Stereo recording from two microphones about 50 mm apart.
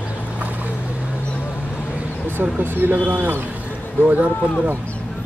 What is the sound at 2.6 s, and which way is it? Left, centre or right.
A man's voice, right.